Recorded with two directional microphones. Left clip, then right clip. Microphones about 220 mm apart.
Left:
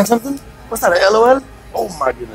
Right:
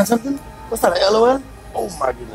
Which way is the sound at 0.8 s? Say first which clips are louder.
Left 3 dB; 35° left (ahead or behind).